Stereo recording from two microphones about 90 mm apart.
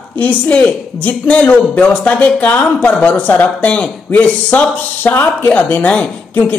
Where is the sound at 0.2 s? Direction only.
15° left (ahead or behind).